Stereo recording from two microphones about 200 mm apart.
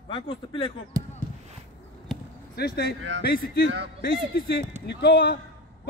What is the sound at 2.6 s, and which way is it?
Speech, 55° left (ahead or behind).